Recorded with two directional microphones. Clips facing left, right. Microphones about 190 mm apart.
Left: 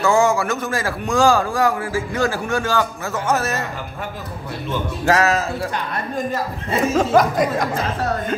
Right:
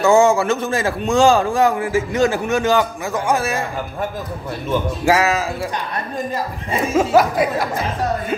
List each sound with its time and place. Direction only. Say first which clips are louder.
0.0 s a man's voice: right 4 dB; 25° right (ahead or behind)
5.0 s speech: left 1 dB; 10° right (ahead or behind)
6.7 s speech: right 1 dB; 10° right (ahead or behind)